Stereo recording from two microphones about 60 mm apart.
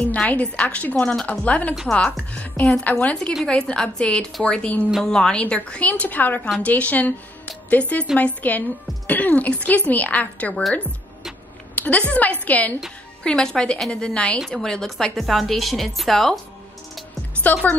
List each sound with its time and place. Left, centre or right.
0.3 s a woman's voice: left
3.4 s a woman's voice: centre
11.7 s a sound: left
12.1 s a woman's voice: left
13.2 s a woman's voice: centre
17.5 s speech: left